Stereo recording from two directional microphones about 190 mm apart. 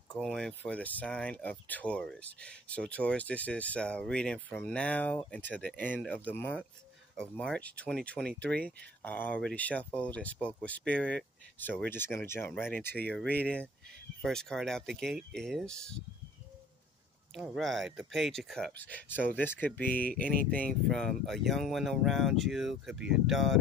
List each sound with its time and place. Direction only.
0.1 s speech: centre (ahead or behind)
14.2 s speech: 5° left (ahead or behind)
17.3 s speech: centre (ahead or behind)